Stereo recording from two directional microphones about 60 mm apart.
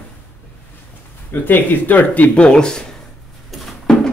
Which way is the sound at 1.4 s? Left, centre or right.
Left.